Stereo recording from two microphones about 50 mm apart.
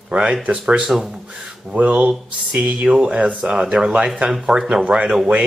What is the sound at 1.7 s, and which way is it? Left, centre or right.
Speech, right.